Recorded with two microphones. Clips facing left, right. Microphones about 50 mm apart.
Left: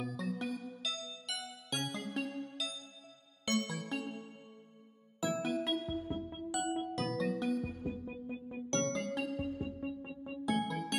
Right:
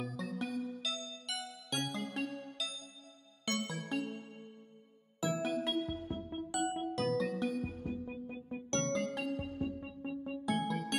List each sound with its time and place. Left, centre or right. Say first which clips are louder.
0.0 s music: left 1 dB; centre
5.2 s music: even; centre